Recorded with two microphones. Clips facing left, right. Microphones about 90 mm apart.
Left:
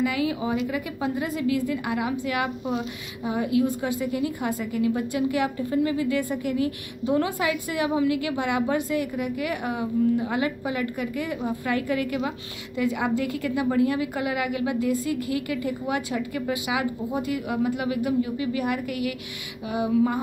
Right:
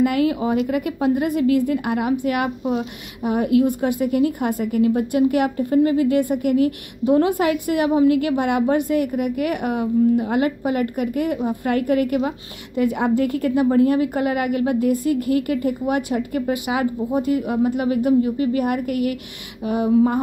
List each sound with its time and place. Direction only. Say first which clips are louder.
0.0 s a woman's voice: right 6 dB; 55° right (ahead or behind)
13.7 s a woman's voice: right 5 dB; 40° right (ahead or behind)